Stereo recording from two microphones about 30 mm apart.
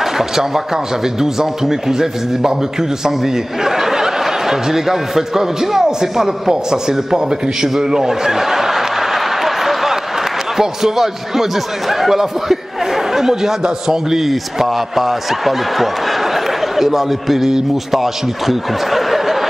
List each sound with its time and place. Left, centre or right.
0.0 s a sound: centre
1.0 s a man's voice: centre
7.6 s chuckle: centre
10.6 s speech: centre
14.2 s speech: centre
18.0 s speech: centre